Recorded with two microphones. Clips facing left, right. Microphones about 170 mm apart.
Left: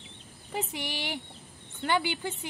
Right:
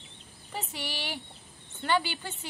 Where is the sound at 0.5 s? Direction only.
15° left (ahead or behind).